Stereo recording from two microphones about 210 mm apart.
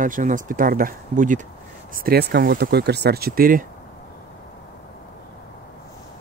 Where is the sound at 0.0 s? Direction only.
40° right (ahead or behind).